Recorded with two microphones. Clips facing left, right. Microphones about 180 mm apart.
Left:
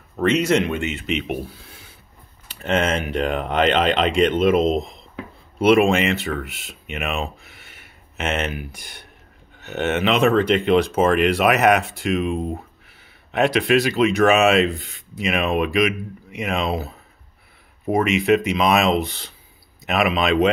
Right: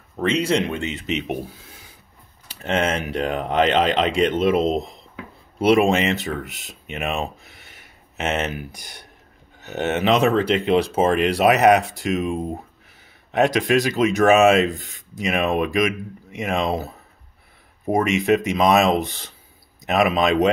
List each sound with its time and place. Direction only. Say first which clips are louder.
0.2 s speech: left 2 dB; 30° right (ahead or behind)
3.0 s speech: left 1 dB; 35° right (ahead or behind)